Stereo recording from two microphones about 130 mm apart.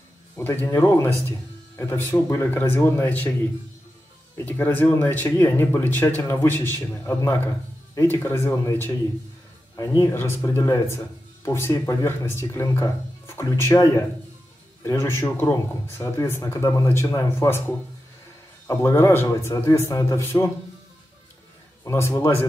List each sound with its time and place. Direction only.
0.4 s speech: 15° left (ahead or behind)
4.4 s speech: 15° left (ahead or behind)
21.8 s speech: 20° left (ahead or behind)